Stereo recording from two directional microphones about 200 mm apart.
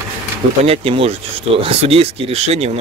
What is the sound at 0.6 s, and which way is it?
Speech, 30° right (ahead or behind).